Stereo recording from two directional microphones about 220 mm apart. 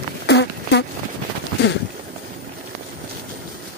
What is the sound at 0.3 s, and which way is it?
Fart, 50° left (ahead or behind).